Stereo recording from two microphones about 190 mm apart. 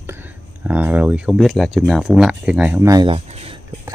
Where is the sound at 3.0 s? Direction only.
30° right (ahead or behind).